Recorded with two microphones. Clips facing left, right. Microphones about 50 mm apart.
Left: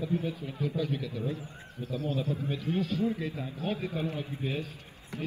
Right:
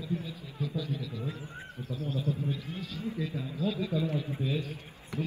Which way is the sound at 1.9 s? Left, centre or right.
Left.